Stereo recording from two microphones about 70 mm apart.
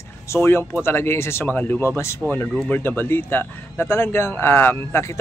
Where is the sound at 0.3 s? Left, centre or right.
Left.